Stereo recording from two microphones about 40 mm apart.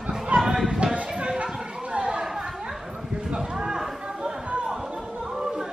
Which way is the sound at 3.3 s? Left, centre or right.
Right.